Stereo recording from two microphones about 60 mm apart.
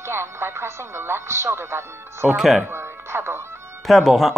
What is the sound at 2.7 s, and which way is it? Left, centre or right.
Speech, right.